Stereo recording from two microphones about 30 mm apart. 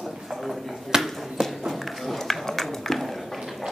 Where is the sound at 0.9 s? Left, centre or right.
Centre.